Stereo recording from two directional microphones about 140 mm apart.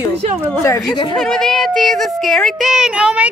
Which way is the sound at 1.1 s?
5° left (ahead or behind).